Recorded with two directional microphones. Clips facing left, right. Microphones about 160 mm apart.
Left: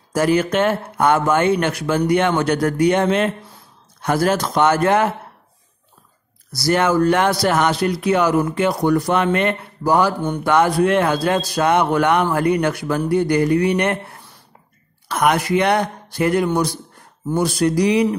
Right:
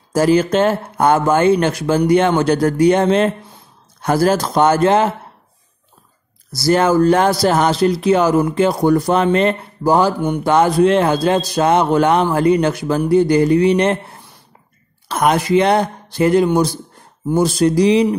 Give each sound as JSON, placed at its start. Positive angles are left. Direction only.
{"t": 0.1, "sound": "speech", "side_deg": -30}
{"t": 6.5, "sound": "speech", "side_deg": -30}